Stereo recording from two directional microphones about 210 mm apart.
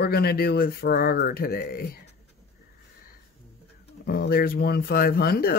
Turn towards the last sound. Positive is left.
turn(degrees=45)  # may be behind; listen again after turning